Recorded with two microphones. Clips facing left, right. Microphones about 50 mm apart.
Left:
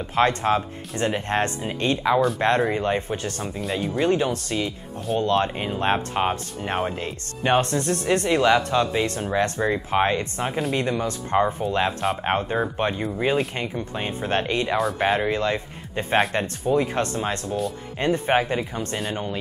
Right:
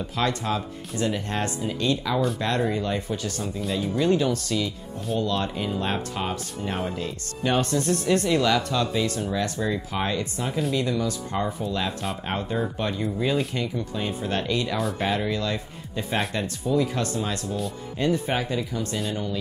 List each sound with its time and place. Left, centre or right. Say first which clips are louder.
0.1 s speech: left 7 dB; left